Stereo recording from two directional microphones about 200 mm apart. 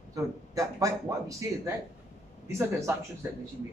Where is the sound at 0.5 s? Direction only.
15° right (ahead or behind).